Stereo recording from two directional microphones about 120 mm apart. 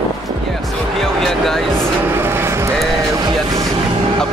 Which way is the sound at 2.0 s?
20° right (ahead or behind).